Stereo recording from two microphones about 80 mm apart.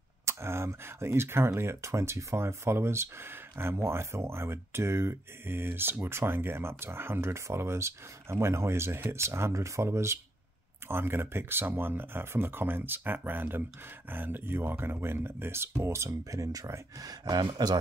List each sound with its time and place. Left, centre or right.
0.2 s speech: right
17.1 s speech: right